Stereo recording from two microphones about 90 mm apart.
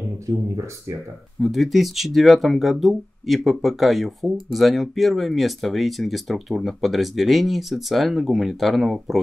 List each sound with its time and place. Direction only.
0.3 s speech: 35° right (ahead or behind)
1.4 s speech: centre (ahead or behind)